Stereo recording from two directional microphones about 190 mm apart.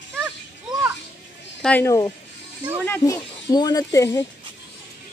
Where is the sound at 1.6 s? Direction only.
10° left (ahead or behind).